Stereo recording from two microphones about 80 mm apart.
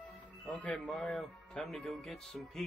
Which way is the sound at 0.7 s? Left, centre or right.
Centre.